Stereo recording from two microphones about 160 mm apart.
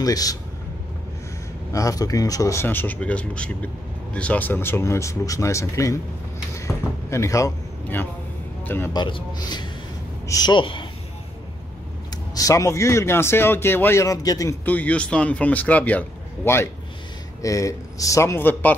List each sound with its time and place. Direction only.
0.0 s speech: 20° left (ahead or behind)
1.7 s speech: 20° left (ahead or behind)
7.1 s a man's voice: 20° left (ahead or behind)
8.9 s a man's voice: 30° left (ahead or behind)
12.4 s speech: 20° left (ahead or behind)
14.6 s speech: 10° left (ahead or behind)